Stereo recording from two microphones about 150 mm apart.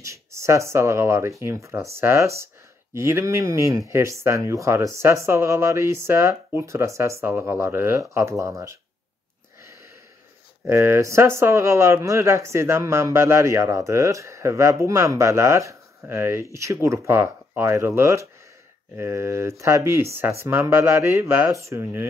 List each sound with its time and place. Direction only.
0.0 s speech: 20° right (ahead or behind)
10.7 s speech: 20° right (ahead or behind)